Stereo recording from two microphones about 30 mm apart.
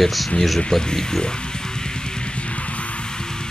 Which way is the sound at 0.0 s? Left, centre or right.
Centre.